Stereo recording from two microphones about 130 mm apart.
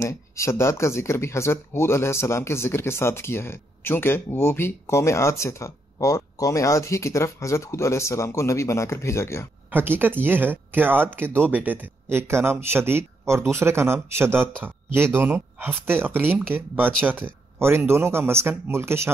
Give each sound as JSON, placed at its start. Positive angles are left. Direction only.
{"t": 0.0, "sound": "speech", "side_deg": 20}
{"t": 9.7, "sound": "speech", "side_deg": -15}